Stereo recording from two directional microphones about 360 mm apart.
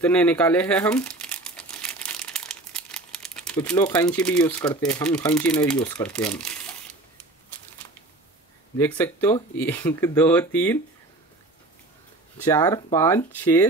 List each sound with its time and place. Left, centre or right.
0.0 s speech: centre
8.7 s speech: centre
12.4 s speech: centre